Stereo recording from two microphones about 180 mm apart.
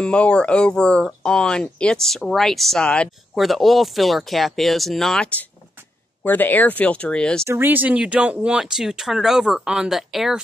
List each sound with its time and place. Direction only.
0.0 s speech: 5° left (ahead or behind)
7.4 s speech: 10° right (ahead or behind)